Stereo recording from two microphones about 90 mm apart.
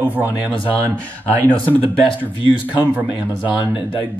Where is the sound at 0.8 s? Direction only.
15° left (ahead or behind).